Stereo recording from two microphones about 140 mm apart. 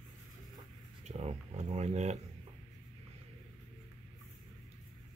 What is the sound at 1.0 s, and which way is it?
Speech, 50° right (ahead or behind).